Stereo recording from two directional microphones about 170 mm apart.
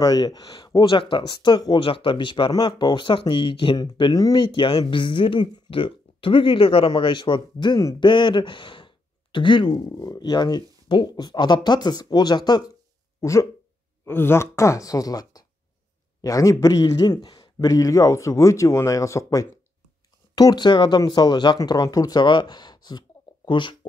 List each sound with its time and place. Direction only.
0.0 s speech: 25° left (ahead or behind)